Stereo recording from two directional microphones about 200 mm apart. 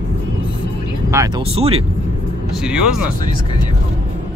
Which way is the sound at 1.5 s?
30° right (ahead or behind).